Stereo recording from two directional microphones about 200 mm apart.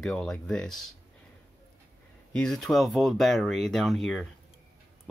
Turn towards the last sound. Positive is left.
turn(degrees=0)  # may be behind; listen again after turning